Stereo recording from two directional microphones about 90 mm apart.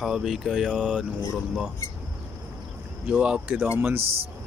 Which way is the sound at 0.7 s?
15° right (ahead or behind).